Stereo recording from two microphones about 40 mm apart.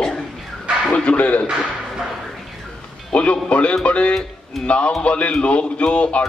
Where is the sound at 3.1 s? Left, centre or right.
Left.